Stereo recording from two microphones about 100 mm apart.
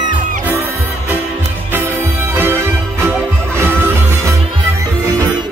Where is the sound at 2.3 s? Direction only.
20° right (ahead or behind).